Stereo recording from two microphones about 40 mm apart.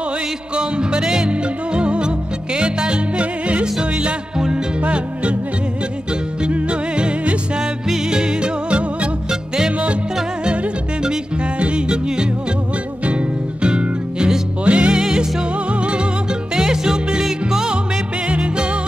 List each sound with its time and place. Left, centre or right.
0.6 s music: right
6.5 s music: right
11.6 s music: right
13.6 s music: right
15.0 s music: centre
16.5 s music: centre
18.3 s music: right